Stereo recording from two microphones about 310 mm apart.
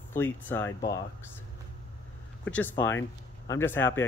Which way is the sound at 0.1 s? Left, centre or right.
Centre.